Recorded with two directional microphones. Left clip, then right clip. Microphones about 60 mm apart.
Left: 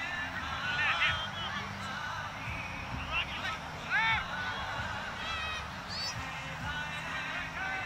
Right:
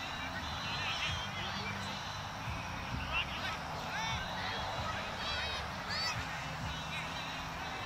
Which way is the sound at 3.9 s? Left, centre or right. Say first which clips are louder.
Left 11 dB; left.